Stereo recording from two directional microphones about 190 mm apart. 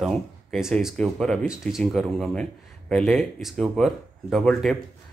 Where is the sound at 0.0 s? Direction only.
Centre (ahead or behind).